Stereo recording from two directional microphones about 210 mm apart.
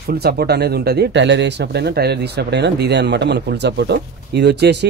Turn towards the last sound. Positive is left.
turn(degrees=-55)  # may be behind; listen again after turning